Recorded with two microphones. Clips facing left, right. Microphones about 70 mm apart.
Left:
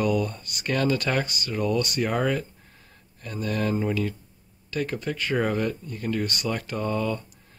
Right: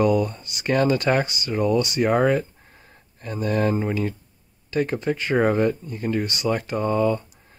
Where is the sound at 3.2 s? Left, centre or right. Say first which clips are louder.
Right 5 dB; right.